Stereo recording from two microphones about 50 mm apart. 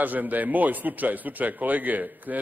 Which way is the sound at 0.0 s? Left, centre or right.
Right.